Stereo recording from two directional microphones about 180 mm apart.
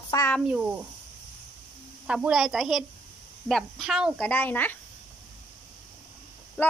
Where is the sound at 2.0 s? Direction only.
5° right (ahead or behind).